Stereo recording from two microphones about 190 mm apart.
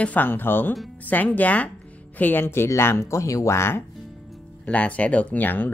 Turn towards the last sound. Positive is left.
turn(degrees=10)  # may be behind; listen again after turning